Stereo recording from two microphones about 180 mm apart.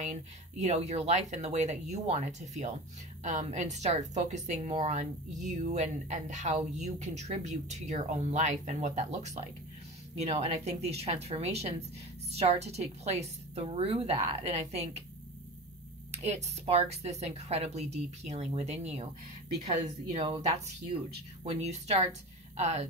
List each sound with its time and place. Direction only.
0.0 s a woman's voice: 40° right (ahead or behind)
16.1 s a woman's voice: 40° right (ahead or behind)
20.2 s a woman's voice: 30° right (ahead or behind)